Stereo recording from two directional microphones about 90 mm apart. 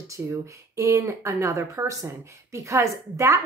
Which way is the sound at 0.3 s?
35° right (ahead or behind).